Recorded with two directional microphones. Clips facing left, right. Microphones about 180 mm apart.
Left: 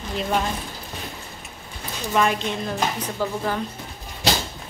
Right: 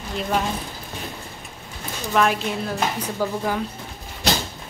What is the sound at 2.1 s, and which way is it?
Speech, centre (ahead or behind).